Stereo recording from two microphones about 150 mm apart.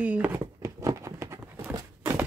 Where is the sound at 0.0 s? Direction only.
10° right (ahead or behind).